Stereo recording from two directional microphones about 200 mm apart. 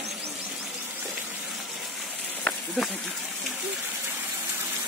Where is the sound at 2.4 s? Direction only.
Centre (ahead or behind).